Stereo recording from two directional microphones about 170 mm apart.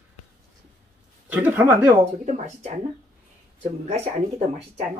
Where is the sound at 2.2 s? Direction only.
45° right (ahead or behind).